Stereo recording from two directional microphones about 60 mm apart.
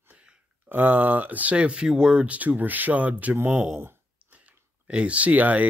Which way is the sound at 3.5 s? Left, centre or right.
Centre.